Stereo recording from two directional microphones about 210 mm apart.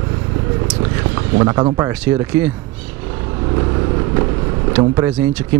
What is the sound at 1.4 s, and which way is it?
Speech, 20° right (ahead or behind).